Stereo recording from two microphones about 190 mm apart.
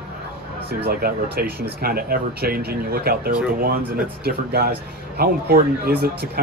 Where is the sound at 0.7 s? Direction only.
50° right (ahead or behind).